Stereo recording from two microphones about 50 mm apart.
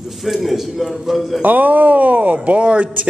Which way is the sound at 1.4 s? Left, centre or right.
Right.